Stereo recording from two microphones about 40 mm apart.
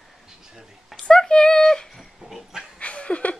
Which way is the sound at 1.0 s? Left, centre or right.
Centre.